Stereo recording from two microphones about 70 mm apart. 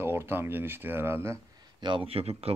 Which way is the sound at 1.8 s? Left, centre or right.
Right.